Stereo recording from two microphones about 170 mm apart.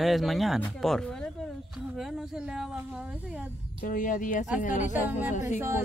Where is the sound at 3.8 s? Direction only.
50° left (ahead or behind).